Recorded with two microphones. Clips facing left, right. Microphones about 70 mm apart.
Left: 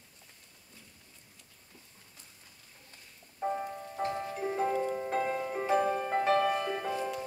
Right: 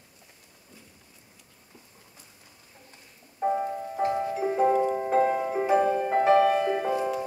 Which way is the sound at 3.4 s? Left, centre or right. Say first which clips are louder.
Right 7 dB; centre.